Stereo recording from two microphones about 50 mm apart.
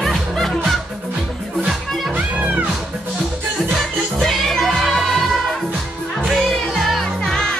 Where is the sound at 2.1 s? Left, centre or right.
Right.